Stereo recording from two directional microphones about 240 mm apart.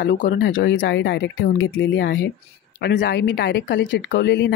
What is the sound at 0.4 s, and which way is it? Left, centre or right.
Speech, left.